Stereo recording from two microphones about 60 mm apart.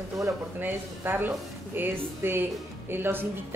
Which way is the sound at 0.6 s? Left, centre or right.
Right.